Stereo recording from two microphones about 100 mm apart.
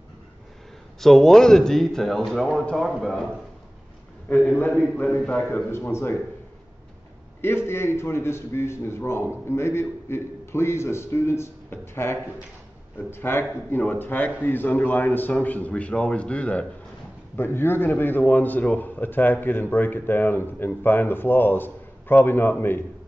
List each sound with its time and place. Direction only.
1.0 s a man's voice: centre (ahead or behind)
4.3 s a man's voice: 15° left (ahead or behind)
5.5 s a man's voice: 25° left (ahead or behind)
7.4 s a man's voice: 25° left (ahead or behind)